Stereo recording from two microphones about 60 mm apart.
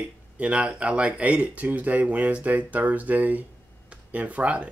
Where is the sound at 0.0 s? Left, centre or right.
Centre.